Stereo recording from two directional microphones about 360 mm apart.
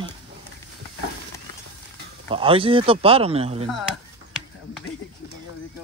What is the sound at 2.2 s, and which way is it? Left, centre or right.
Speech, centre.